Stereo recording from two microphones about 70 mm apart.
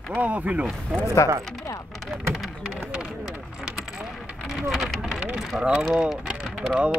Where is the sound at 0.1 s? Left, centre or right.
Right.